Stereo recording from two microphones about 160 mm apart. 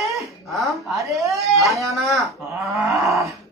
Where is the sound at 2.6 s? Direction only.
20° right (ahead or behind).